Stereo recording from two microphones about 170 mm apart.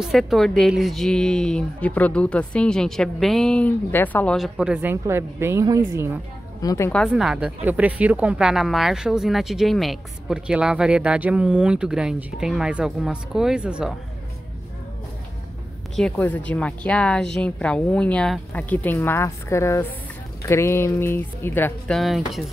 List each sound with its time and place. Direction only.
0.0 s speech: centre (ahead or behind)
6.6 s a woman's voice: 20° left (ahead or behind)
7.1 s speech: 5° right (ahead or behind)
16.0 s speech: 10° left (ahead or behind)